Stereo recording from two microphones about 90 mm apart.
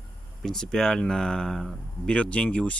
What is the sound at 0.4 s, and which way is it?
Speech, 5° left (ahead or behind).